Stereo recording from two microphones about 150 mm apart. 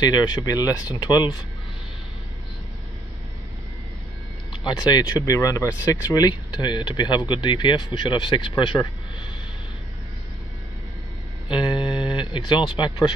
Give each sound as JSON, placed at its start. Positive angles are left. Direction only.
{"t": 0.0, "sound": "speech", "side_deg": 25}
{"t": 4.5, "sound": "speech", "side_deg": 30}
{"t": 11.4, "sound": "speech", "side_deg": 30}